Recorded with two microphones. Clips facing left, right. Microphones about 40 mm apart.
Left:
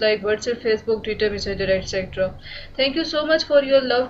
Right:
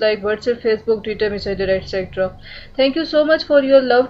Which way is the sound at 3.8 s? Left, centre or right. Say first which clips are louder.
Right 6 dB; centre.